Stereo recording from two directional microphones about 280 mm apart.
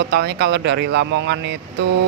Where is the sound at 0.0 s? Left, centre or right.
Right.